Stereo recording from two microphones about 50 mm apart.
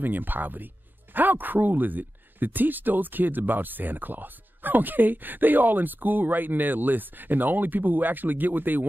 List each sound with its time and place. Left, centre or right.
0.0 s speech: right